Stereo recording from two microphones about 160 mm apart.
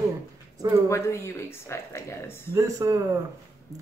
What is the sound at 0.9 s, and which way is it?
Speech, 15° left (ahead or behind).